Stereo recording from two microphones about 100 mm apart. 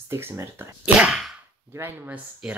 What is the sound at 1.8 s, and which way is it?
Speech, 20° right (ahead or behind).